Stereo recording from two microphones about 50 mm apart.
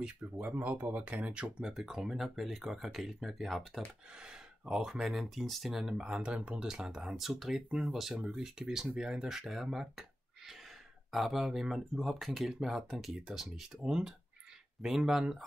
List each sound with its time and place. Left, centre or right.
0.4 s speech: right
1.2 s speech: right
1.6 s speech: centre
4.1 s a sound: centre
4.9 s speech: centre
7.1 s speech: centre